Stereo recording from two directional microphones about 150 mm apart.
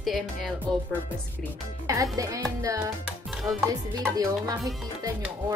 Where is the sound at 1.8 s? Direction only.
20° right (ahead or behind).